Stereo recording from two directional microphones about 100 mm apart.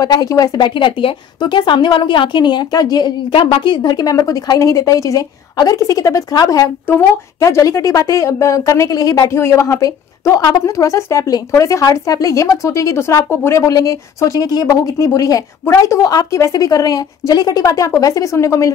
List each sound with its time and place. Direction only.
0.0 s speech: 40° left (ahead or behind)
6.9 s a woman's voice: 30° left (ahead or behind)
9.3 s a woman's voice: 30° left (ahead or behind)